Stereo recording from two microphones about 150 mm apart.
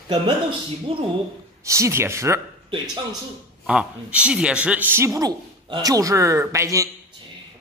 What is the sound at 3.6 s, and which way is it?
A man's voice, 5° right (ahead or behind).